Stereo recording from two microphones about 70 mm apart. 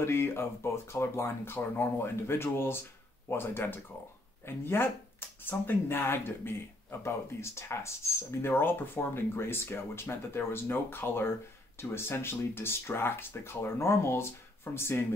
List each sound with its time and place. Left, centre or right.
0.0 s speech: left